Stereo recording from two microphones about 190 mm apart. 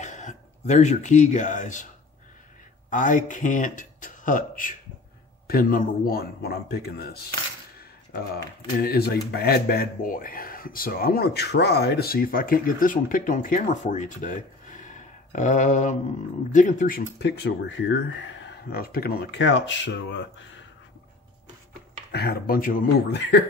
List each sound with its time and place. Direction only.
0.0 s speech: 40° left (ahead or behind)
2.9 s a man's voice: 40° left (ahead or behind)
8.7 s speech: 55° left (ahead or behind); by 20.6 s 75° left (ahead or behind)
22.1 s speech: 55° left (ahead or behind)
23.1 s speech: 65° left (ahead or behind)